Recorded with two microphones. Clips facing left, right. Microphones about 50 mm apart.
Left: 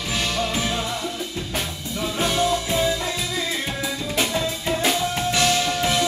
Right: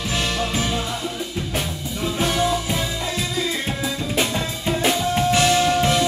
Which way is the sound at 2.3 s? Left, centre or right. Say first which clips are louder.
Even; centre.